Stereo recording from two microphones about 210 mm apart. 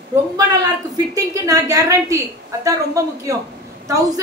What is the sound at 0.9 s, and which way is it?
A woman's voice, 15° right (ahead or behind).